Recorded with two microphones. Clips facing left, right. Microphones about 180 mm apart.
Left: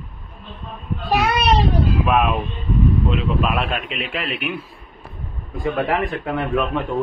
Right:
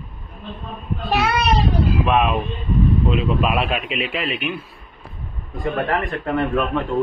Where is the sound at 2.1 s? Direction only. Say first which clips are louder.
Even; 5° left (ahead or behind).